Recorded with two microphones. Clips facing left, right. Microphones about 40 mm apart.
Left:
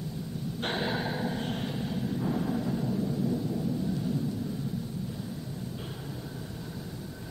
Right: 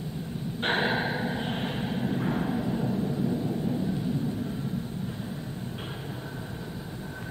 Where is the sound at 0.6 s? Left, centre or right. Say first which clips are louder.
Right 5 dB; right.